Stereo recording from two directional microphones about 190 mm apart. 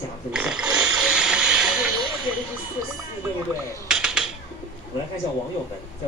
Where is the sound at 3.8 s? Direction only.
5° right (ahead or behind).